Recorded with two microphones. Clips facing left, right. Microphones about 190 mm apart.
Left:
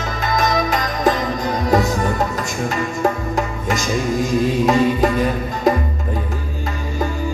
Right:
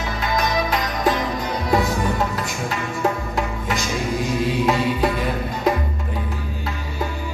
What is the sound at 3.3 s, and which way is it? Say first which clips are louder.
Music: left 3 dB; 45° left (ahead or behind).